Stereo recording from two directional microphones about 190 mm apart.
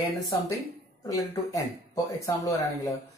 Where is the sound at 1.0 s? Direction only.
20° left (ahead or behind).